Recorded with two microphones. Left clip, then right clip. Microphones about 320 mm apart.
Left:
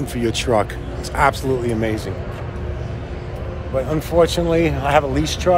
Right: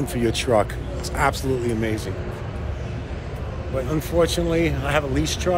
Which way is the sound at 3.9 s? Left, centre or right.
Centre.